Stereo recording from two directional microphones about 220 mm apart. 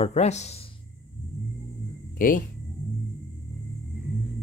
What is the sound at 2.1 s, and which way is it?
Speech, 40° left (ahead or behind).